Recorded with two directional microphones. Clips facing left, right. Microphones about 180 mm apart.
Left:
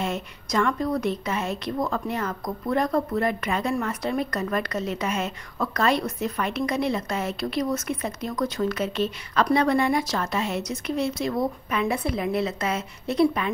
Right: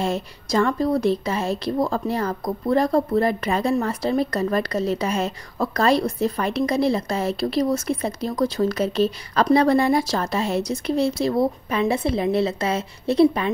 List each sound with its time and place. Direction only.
0.0 s a woman's voice: 35° right (ahead or behind)